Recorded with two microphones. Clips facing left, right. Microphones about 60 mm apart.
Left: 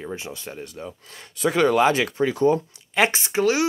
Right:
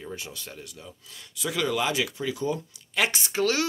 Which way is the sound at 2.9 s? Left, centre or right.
Left.